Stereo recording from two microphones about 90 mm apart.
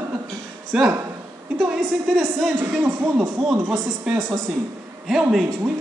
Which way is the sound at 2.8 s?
15° right (ahead or behind).